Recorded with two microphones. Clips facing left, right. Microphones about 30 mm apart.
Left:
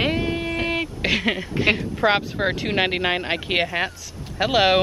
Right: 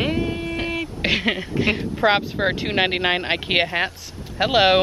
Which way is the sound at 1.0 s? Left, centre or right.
Centre.